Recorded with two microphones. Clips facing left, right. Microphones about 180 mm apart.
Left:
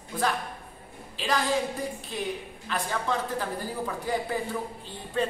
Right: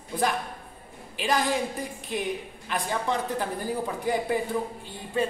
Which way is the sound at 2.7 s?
15° right (ahead or behind).